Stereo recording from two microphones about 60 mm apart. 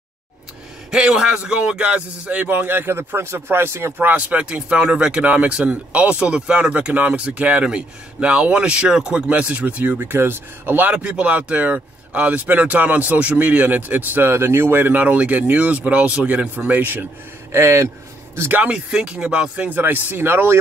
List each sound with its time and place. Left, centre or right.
0.9 s speech: centre; by 4.1 s right
4.1 s speech: right
9.9 s speech: right
10.9 s speech: right
17.5 s speech: right
18.7 s speech: centre
19.8 s speech: right